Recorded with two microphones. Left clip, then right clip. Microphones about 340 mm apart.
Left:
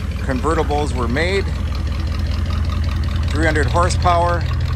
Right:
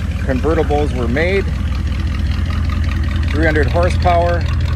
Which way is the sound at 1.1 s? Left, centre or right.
Centre.